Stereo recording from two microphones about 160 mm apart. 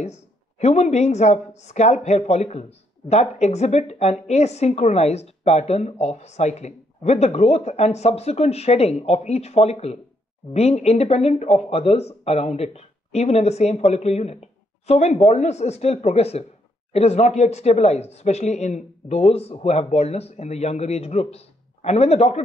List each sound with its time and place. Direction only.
0.6 s a woman's voice: 45° left (ahead or behind)